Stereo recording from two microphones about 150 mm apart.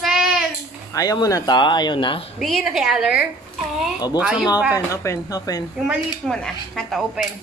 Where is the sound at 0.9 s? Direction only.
25° left (ahead or behind).